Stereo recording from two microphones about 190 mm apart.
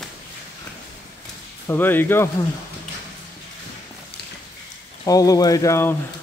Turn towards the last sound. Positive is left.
turn(degrees=15)  # may be behind; listen again after turning